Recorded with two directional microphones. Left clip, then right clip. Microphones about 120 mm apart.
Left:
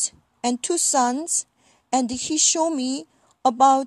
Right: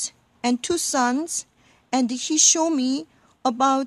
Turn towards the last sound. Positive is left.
turn(degrees=30)  # may be behind; listen again after turning